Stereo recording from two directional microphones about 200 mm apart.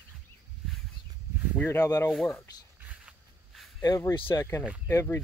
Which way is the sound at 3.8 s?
15° left (ahead or behind).